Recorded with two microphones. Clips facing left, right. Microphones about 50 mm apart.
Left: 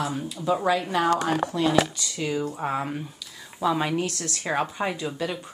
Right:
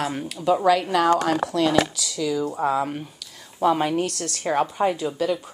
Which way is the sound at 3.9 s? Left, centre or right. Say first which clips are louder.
Right 3 dB; right.